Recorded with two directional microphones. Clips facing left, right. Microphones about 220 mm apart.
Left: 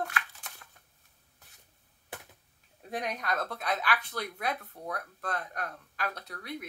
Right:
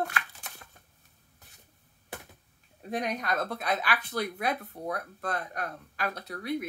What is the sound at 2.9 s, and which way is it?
Speech, centre (ahead or behind).